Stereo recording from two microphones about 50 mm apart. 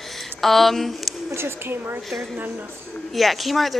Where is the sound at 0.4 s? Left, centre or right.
Centre.